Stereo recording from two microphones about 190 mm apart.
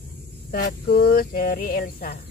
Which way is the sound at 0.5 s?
50° left (ahead or behind).